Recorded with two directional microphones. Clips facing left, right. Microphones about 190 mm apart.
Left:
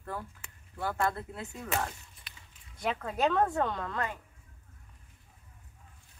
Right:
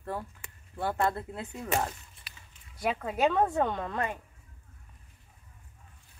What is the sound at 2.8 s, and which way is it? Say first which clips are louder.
A woman's voice: right 2 dB; 10° right (ahead or behind).